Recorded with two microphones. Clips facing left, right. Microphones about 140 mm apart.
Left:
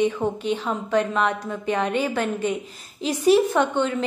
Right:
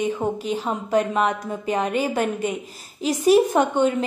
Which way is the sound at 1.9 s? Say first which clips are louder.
Right 1 dB; 40° right (ahead or behind).